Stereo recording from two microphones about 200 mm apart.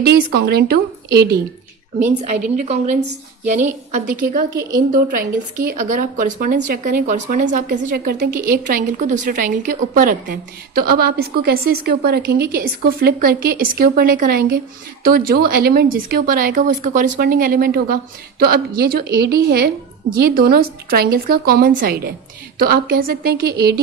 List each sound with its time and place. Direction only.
0.0 s speech: 50° right (ahead or behind)
2.5 s a woman's voice: 35° right (ahead or behind)